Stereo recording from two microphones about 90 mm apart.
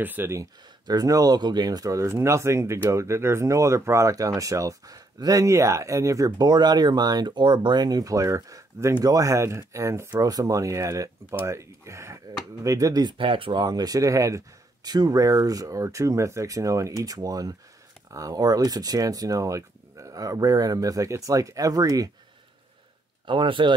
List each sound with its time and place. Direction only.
0.0 s speech: 20° right (ahead or behind)
0.8 s speech: 40° right (ahead or behind)
10.1 s speech: 45° right (ahead or behind)
13.0 s speech: 70° right (ahead or behind); by 22.1 s 45° right (ahead or behind)
23.2 s speech: 70° right (ahead or behind)